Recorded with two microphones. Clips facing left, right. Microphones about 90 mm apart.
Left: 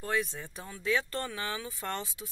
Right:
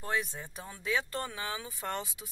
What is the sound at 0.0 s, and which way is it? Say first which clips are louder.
Speech: left 2 dB; 20° right (ahead or behind).